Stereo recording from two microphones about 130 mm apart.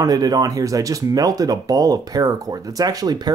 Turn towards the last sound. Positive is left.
turn(degrees=-30)  # may be behind; listen again after turning